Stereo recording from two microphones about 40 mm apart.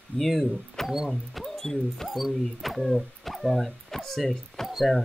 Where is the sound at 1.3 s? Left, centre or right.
Centre.